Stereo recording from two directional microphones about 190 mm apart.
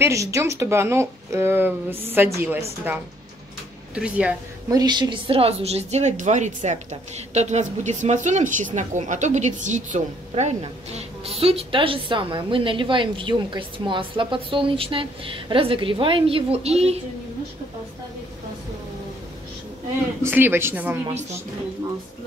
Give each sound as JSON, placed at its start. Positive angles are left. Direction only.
{"t": 0.0, "sound": "a woman's voice", "side_deg": -15}
{"t": 3.9, "sound": "speech", "side_deg": -5}
{"t": 4.6, "sound": "a woman's voice", "side_deg": -20}
{"t": 20.2, "sound": "a woman's voice", "side_deg": -10}